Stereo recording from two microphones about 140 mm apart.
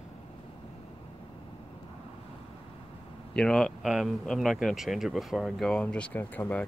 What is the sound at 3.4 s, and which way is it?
Speech, 5° left (ahead or behind).